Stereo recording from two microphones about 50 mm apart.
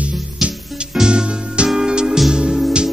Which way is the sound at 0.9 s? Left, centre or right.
Centre.